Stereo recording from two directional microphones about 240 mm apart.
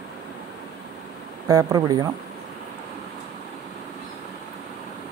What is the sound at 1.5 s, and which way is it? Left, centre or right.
Speech, centre.